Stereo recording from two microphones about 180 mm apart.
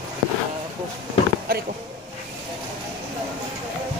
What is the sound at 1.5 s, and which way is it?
Speech, 55° right (ahead or behind).